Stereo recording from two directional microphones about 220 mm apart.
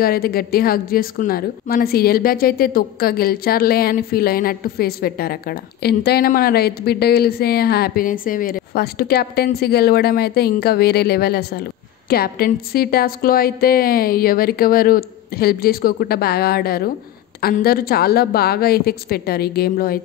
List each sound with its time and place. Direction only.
0.0 s a woman's voice: 45° left (ahead or behind)